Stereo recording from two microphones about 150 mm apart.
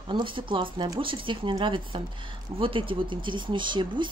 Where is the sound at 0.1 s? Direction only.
35° right (ahead or behind).